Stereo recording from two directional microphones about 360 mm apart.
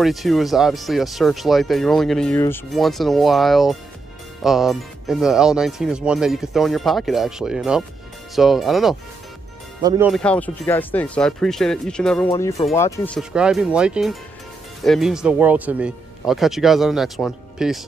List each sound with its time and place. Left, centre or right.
0.0 s speech: centre